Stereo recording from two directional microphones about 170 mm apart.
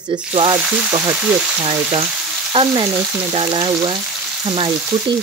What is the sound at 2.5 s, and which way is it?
Speech, 25° right (ahead or behind).